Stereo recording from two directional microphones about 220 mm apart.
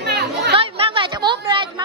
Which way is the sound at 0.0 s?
45° right (ahead or behind).